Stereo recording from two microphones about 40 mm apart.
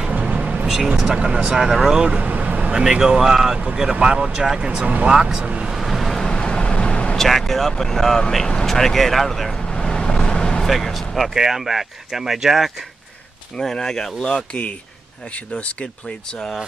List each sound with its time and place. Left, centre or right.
0.1 s vehicle: right
0.9 s speech: centre
2.1 s vehicle: right
2.7 s speech: centre
5.4 s speech: right
5.7 s vehicle: centre
6.3 s vehicle: left
7.2 s speech: centre
9.6 s vehicle: centre
10.7 s speech: centre
11.3 s speech: centre
13.6 s speech: centre
14.3 s speech: left